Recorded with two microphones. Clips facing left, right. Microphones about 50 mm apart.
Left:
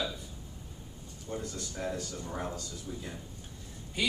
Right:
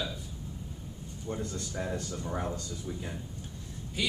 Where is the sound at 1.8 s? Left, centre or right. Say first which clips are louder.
Right 1 dB; centre.